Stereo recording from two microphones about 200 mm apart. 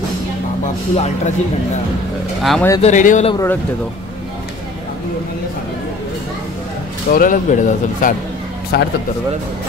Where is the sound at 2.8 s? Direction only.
35° left (ahead or behind).